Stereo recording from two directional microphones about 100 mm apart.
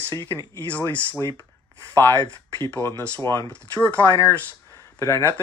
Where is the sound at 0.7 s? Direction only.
15° left (ahead or behind).